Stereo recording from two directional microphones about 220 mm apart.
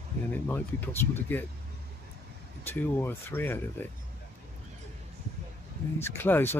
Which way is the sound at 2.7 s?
10° left (ahead or behind).